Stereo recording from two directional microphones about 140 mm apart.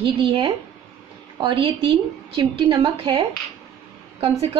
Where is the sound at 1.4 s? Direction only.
35° right (ahead or behind).